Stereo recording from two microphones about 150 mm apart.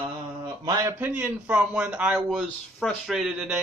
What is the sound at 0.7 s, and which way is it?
Speech, 15° right (ahead or behind).